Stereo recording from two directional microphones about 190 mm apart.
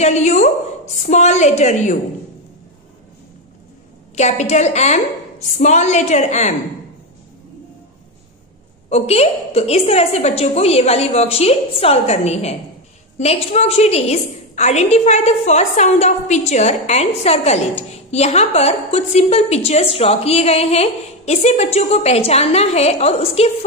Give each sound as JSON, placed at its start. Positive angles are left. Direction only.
{"t": 0.0, "sound": "a woman's voice", "side_deg": 35}
{"t": 4.1, "sound": "a woman's voice", "side_deg": 35}
{"t": 8.8, "sound": "a woman's voice", "side_deg": 35}